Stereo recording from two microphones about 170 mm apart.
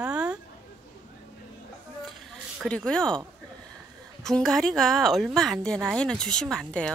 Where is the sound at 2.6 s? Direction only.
5° left (ahead or behind).